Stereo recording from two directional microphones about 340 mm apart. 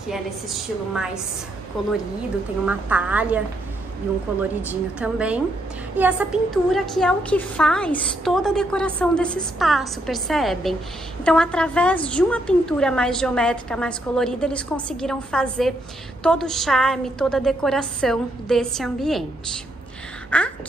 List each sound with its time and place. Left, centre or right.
0.1 s a woman's voice: centre
2.6 s a woman's voice: centre